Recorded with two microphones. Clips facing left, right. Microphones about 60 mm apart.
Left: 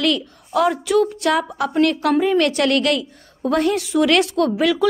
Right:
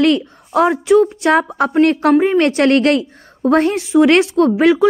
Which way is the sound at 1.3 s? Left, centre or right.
Right.